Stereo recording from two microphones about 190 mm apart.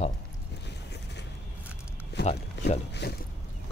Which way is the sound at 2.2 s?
60° left (ahead or behind).